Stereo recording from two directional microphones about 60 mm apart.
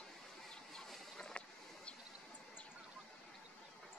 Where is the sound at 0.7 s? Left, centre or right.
Centre.